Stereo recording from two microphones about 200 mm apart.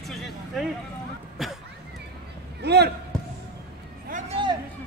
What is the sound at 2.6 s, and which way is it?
Speech, 55° right (ahead or behind).